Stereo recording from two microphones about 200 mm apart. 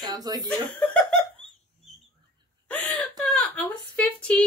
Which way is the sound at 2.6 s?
5° left (ahead or behind).